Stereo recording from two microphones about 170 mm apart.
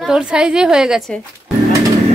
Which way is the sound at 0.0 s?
5° right (ahead or behind).